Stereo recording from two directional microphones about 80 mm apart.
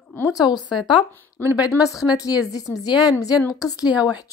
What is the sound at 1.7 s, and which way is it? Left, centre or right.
A woman's voice, left.